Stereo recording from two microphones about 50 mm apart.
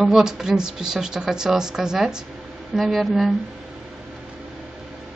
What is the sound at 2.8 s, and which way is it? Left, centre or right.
Speech, centre.